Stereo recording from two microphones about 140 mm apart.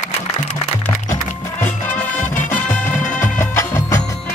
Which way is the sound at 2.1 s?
65° left (ahead or behind).